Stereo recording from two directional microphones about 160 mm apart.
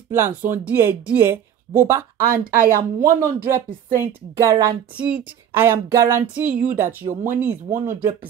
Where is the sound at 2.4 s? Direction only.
55° right (ahead or behind).